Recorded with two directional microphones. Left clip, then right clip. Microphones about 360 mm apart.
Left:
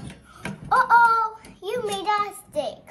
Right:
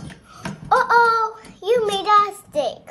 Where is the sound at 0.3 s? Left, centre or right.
Right.